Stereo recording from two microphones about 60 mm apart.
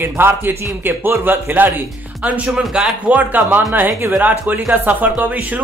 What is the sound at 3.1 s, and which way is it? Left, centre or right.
Speech, right.